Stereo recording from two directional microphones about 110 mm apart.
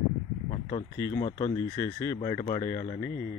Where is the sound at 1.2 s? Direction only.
50° left (ahead or behind).